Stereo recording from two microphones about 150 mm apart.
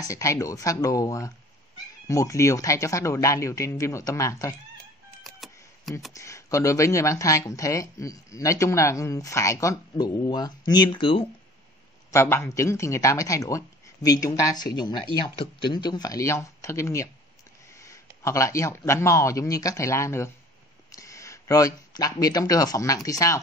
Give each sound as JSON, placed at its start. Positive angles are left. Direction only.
{"t": 0.0, "sound": "speech", "side_deg": 20}
{"t": 5.4, "sound": "a sound", "side_deg": 0}
{"t": 6.1, "sound": "speech", "side_deg": 20}
{"t": 12.1, "sound": "speech", "side_deg": 15}